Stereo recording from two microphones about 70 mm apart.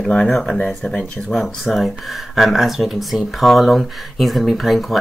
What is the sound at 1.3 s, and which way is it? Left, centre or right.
Speech, centre.